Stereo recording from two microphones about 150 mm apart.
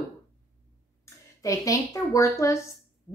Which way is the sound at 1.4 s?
20° left (ahead or behind).